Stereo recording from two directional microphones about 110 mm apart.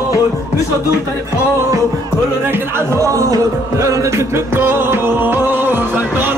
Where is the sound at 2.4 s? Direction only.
20° right (ahead or behind).